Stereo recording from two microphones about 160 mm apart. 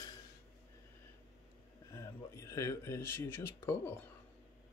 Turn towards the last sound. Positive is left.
turn(degrees=15)  # may be behind; listen again after turning